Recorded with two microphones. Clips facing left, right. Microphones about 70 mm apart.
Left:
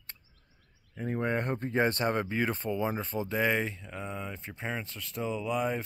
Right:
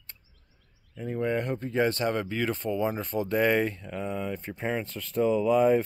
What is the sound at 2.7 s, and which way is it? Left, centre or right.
Speech, centre.